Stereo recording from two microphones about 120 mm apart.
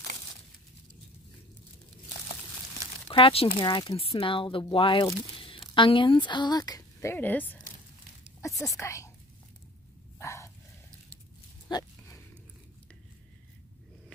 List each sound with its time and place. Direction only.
3.1 s speech: 45° left (ahead or behind)
3.6 s speech: 35° left (ahead or behind)
3.9 s speech: 55° left (ahead or behind); by 7.6 s 15° left (ahead or behind)
8.4 s speech: 25° left (ahead or behind)
10.1 s dog: 25° left (ahead or behind)